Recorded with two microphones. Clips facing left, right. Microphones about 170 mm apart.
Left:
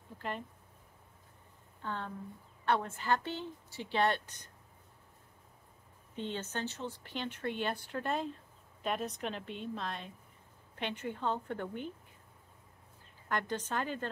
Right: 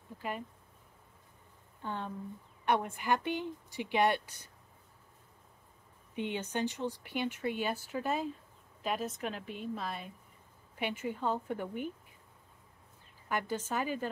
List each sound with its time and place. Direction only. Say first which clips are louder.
1.8 s speech: right 1 dB; 15° right (ahead or behind)
6.1 s a woman's voice: right 3 dB; 15° right (ahead or behind)
13.3 s speech: right 1 dB; 10° right (ahead or behind)